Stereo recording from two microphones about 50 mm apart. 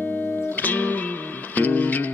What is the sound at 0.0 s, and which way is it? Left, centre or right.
Music, left.